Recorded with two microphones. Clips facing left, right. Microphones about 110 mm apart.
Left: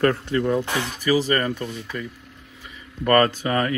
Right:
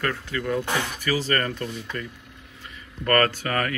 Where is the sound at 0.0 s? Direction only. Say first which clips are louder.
Left 8 dB; 35° left (ahead or behind); by 2.0 s 10° left (ahead or behind).